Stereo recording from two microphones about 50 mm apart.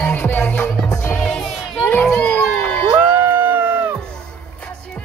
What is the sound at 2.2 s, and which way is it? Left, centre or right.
Crowd, left.